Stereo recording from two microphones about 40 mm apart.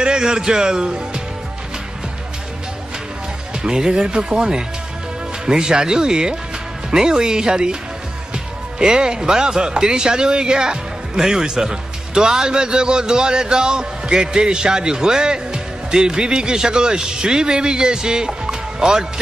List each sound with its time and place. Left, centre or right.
0.0 s speech: right
3.6 s a man's voice: centre
8.7 s a man's voice: centre